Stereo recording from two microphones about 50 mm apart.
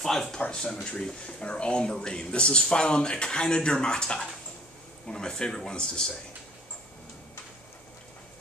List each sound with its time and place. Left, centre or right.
0.2 s speech: centre